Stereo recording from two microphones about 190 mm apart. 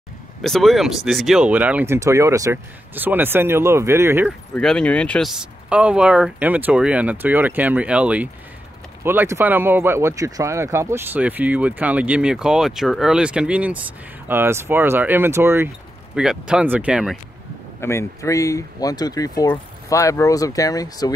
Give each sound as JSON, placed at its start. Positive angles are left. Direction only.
{"t": 0.4, "sound": "speech", "side_deg": 0}
{"t": 4.6, "sound": "speech", "side_deg": 5}
{"t": 17.7, "sound": "speech", "side_deg": 15}